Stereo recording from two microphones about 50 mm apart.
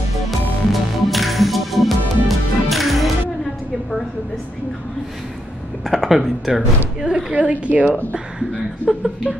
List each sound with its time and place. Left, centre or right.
0.3 s music: centre
5.9 s a woman's voice: centre
7.3 s a woman's voice: right
8.8 s speech: centre